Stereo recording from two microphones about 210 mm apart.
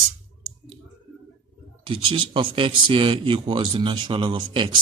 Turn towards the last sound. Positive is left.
turn(degrees=-20)  # may be behind; listen again after turning